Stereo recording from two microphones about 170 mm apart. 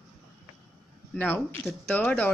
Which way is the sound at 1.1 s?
10° left (ahead or behind).